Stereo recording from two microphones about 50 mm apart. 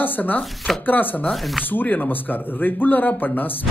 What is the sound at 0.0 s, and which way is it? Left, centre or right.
Speech, left.